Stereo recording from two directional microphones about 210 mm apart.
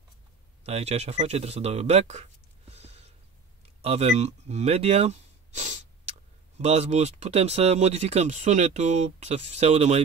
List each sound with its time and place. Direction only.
0.7 s speech: 30° right (ahead or behind)
2.7 s a sound: 30° right (ahead or behind)
3.8 s speech: 30° right (ahead or behind)